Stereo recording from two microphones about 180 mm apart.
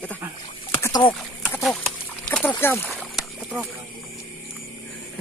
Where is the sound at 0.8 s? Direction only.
20° left (ahead or behind).